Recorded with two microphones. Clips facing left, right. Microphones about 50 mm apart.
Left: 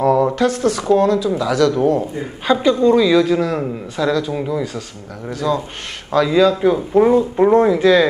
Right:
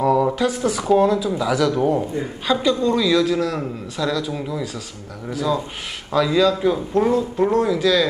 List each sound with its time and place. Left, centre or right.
0.0 s a sound: centre
0.5 s speech: centre
2.4 s a man's voice: centre
5.3 s speech: centre
6.1 s a man's voice: centre; by 8.1 s left